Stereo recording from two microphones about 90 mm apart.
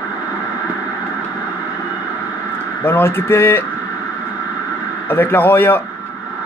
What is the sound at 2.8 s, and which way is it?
Speech, 25° left (ahead or behind).